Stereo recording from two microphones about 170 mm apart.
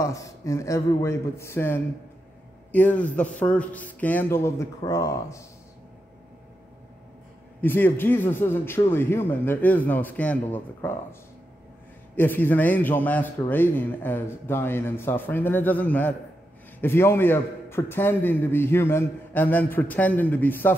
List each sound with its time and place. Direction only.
0.0 s a man's voice: 20° left (ahead or behind)
7.6 s a man's voice: 10° left (ahead or behind)
12.2 s a man's voice: 10° left (ahead or behind)